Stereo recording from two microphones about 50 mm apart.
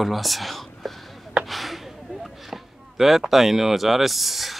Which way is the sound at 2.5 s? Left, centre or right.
Centre.